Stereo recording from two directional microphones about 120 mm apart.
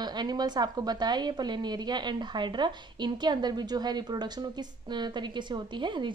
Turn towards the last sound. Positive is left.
turn(degrees=-40)  # may be behind; listen again after turning